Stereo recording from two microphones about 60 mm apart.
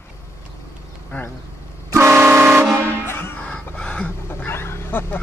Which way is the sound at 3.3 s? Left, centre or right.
Left.